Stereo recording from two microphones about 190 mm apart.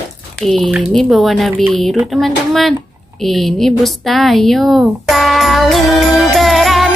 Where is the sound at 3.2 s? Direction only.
Centre (ahead or behind).